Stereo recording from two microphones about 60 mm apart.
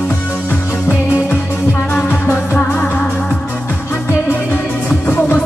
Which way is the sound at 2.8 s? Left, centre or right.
Centre.